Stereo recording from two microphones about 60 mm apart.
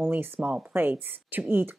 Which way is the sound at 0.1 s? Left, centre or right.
Right.